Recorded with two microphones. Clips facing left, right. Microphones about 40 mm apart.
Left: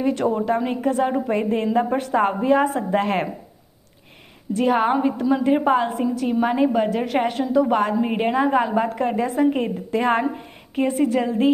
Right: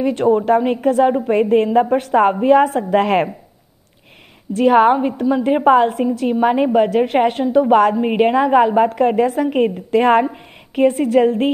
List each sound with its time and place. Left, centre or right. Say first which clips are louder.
0.0 s a woman's voice: right 6 dB; right
4.6 s a woman's voice: right 7 dB; right